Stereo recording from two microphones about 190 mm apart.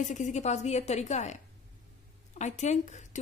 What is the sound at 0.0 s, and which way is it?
A woman's voice, 40° left (ahead or behind).